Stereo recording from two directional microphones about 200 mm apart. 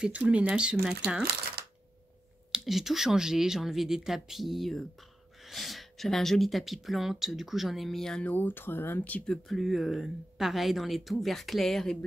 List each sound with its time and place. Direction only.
0.0 s speech: 5° right (ahead or behind)
2.5 s speech: centre (ahead or behind)